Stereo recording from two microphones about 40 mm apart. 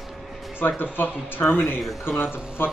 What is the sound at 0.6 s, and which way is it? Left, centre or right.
A man's voice, left.